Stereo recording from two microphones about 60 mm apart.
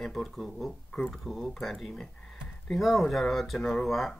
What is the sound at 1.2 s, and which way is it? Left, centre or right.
Speech, centre.